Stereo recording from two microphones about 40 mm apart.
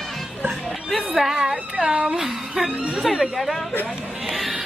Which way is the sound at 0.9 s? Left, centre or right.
Centre.